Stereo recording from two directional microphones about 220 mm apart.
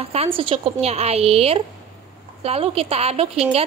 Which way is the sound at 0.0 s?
25° right (ahead or behind).